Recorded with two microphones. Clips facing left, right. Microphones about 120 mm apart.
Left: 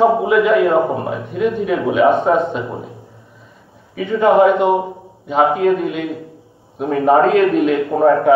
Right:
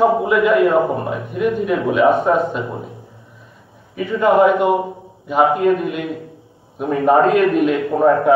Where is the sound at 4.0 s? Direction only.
20° left (ahead or behind).